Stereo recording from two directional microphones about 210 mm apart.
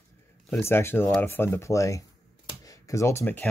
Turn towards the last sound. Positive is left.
turn(degrees=5)  # may be behind; listen again after turning